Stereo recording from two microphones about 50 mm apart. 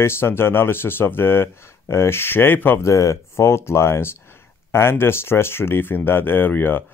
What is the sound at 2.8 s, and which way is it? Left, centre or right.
Speech, left.